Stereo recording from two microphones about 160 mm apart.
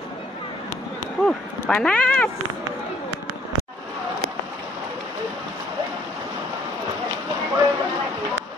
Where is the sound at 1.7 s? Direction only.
5° left (ahead or behind).